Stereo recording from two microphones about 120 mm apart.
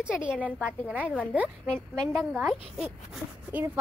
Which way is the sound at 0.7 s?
5° right (ahead or behind).